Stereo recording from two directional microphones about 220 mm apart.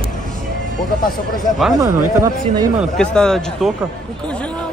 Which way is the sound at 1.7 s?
15° right (ahead or behind).